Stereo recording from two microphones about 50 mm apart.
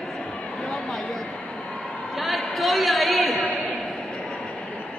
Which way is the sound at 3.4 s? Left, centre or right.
Left.